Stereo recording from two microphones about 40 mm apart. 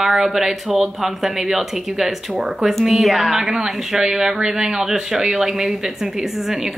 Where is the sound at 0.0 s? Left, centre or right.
Centre.